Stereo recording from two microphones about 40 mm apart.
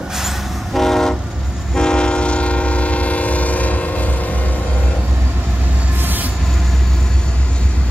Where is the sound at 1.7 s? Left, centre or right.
Left.